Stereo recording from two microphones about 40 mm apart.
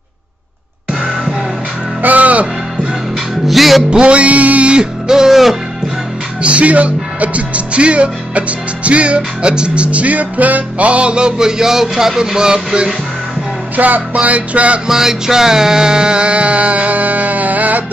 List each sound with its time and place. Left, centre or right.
2.0 s music: right
3.4 s music: centre
3.9 s music: right
4.7 s music: centre
6.4 s speech: right
9.8 s music: right; by 12.9 s centre
13.7 s music: right
14.1 s speech: right
14.9 s speech: centre; by 17.8 s right